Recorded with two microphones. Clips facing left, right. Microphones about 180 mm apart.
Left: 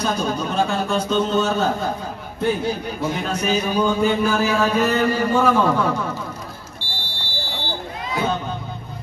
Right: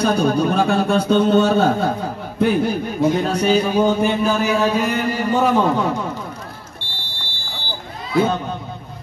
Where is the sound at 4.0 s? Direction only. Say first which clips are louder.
Right 1 dB; 20° right (ahead or behind).